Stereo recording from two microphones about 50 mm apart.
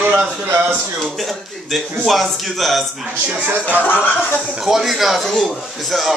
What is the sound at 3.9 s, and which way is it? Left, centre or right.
Speech, left.